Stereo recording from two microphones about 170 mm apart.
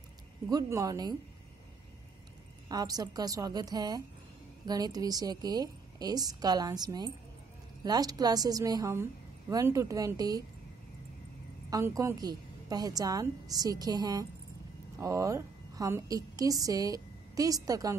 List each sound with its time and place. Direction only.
0.5 s a woman's voice: 20° right (ahead or behind)
2.7 s a woman's voice: 25° right (ahead or behind)
11.7 s a woman's voice: 20° right (ahead or behind)